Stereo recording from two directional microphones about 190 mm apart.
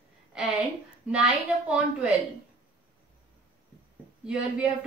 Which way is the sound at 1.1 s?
5° right (ahead or behind).